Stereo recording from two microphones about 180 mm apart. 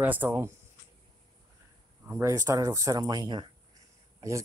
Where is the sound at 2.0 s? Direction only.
15° right (ahead or behind).